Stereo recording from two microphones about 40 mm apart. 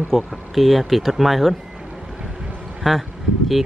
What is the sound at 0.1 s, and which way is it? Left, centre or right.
Speech, centre.